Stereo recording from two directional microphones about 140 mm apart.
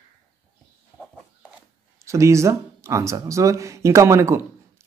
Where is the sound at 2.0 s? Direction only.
20° right (ahead or behind).